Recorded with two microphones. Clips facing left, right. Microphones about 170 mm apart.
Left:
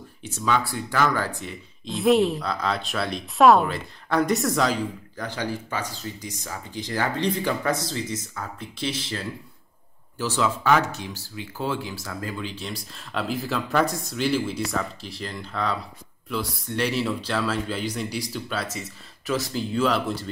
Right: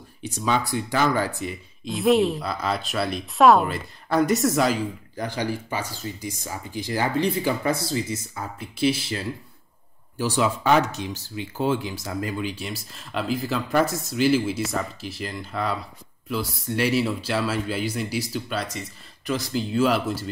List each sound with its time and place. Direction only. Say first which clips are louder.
0.2 s speech: even; 15° right (ahead or behind)
1.9 s speech: even; centre (ahead or behind)